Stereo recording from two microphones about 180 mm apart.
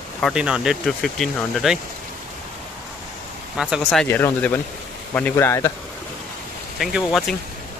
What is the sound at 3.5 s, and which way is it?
Speech, 5° right (ahead or behind).